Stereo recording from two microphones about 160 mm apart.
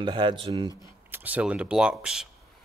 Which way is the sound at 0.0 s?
30° right (ahead or behind).